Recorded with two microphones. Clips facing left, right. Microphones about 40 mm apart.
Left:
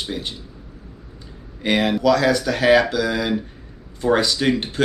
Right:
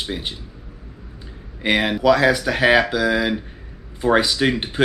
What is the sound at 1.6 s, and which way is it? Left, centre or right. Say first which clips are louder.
Speech: even; centre.